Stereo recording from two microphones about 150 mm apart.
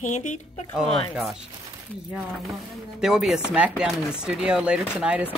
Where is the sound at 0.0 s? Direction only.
55° left (ahead or behind).